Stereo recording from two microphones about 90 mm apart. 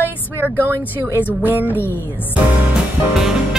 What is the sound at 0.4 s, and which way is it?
Speech, 25° right (ahead or behind).